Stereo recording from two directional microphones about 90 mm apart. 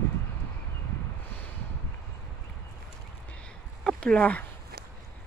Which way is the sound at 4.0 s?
15° left (ahead or behind).